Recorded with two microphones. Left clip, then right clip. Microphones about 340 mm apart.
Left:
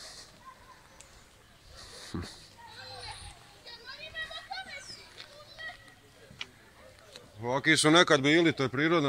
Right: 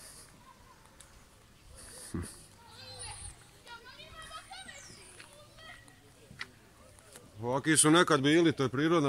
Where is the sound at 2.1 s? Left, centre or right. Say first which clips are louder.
Left 1 dB; centre.